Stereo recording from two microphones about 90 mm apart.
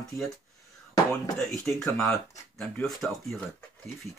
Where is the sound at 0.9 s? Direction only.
35° left (ahead or behind).